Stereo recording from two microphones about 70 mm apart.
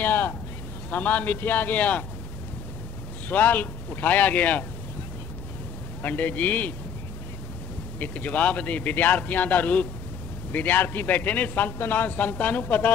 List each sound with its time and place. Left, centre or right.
0.0 s a sound: left
0.8 s a man's voice: left
3.3 s a man's voice: left
6.0 s a man's voice: left
8.0 s a man's voice: left